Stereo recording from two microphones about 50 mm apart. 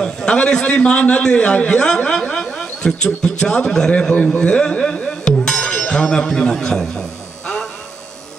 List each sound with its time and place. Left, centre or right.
0.0 s a man's voice: centre
2.2 s a sound: left
2.5 s speech: centre
4.1 s music: left
5.9 s speech: centre
6.3 s a sound: centre